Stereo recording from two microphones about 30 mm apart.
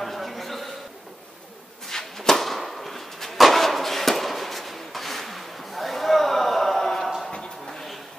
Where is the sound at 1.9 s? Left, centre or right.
Centre.